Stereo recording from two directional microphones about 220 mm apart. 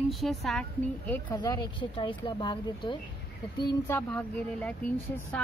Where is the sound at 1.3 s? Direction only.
20° left (ahead or behind).